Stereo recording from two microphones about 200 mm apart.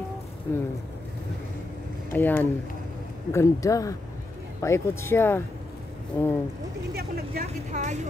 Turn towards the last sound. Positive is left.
turn(degrees=-35)  # may be behind; listen again after turning